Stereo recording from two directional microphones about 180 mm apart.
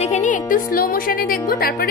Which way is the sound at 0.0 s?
40° left (ahead or behind).